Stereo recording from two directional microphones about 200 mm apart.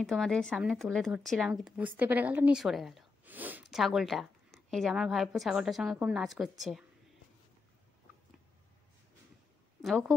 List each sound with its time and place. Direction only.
0.0 s speech: centre (ahead or behind)
9.8 s speech: centre (ahead or behind)